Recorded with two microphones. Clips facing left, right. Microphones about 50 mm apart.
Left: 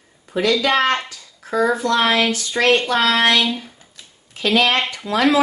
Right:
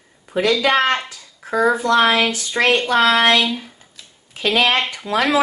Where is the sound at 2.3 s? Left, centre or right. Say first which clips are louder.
Left 1 dB; centre.